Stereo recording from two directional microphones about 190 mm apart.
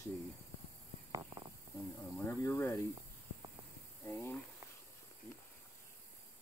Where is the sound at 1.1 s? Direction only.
20° right (ahead or behind).